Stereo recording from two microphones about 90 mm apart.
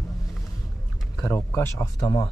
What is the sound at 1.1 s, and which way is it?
Speech, 30° left (ahead or behind).